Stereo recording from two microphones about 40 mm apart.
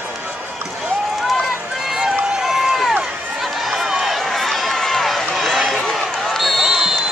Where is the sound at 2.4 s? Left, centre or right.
Centre.